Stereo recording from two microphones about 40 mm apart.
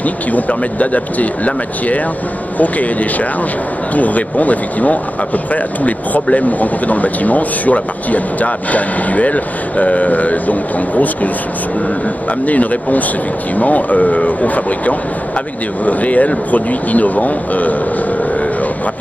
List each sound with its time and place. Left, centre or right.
0.0 s speech: left
12.4 s speech: left